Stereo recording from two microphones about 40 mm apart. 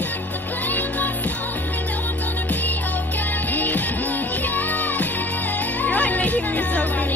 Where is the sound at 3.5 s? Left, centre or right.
Left.